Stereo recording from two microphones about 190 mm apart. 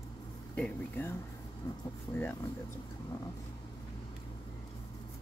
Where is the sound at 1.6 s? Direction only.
20° left (ahead or behind).